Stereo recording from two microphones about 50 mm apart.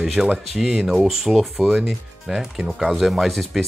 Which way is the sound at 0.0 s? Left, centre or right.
Centre.